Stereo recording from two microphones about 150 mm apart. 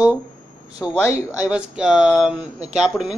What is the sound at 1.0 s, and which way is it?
Speech, 20° left (ahead or behind).